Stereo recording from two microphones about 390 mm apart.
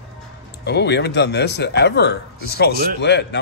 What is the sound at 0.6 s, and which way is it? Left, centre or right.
Speech, left.